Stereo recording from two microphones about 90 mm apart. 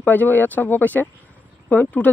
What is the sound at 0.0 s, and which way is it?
Speech, 20° left (ahead or behind).